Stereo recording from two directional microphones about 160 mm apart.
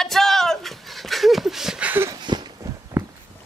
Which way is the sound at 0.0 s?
Centre (ahead or behind).